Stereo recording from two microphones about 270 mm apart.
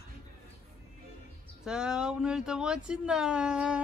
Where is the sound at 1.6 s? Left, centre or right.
Centre.